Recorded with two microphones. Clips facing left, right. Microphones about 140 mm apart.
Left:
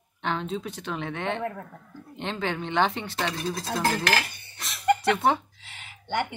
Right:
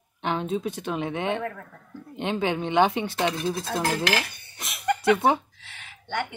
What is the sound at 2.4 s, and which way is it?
Mantra, 15° right (ahead or behind).